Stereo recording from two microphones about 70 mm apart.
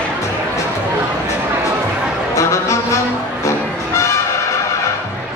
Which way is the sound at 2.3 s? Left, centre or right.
Left.